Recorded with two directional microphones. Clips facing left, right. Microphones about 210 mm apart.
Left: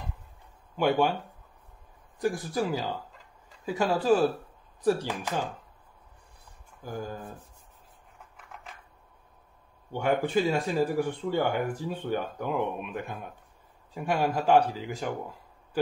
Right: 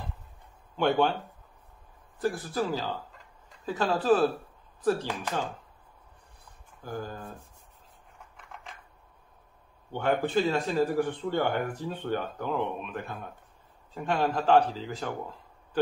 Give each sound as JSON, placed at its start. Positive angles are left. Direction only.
{"t": 0.7, "sound": "speech", "side_deg": 10}
{"t": 2.1, "sound": "speech", "side_deg": 15}
{"t": 6.8, "sound": "speech", "side_deg": 15}
{"t": 9.9, "sound": "speech", "side_deg": 10}